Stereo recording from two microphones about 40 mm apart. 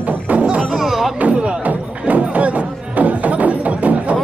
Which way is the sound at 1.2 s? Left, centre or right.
Right.